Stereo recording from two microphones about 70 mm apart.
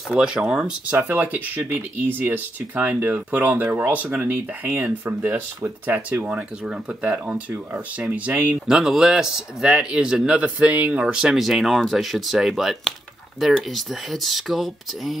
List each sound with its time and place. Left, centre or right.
0.1 s speech: centre
1.0 s speech: right
8.6 s speech: centre